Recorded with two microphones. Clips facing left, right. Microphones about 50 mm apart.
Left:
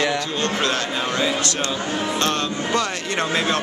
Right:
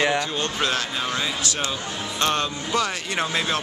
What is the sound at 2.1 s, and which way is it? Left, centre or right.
Speech, centre.